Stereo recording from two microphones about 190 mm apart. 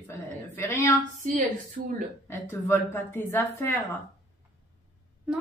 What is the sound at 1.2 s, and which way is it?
Speech, 45° right (ahead or behind).